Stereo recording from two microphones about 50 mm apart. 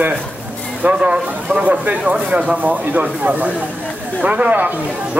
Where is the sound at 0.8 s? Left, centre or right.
Centre.